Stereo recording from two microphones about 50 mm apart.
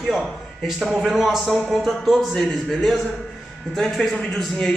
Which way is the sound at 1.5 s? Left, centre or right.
Centre.